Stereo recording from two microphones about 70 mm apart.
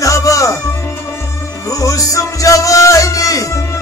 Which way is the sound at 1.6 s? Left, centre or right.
Left.